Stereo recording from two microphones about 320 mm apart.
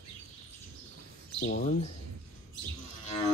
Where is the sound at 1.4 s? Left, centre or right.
Left.